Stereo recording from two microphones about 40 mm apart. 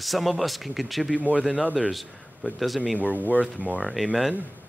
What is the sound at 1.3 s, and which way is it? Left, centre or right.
Speech, right.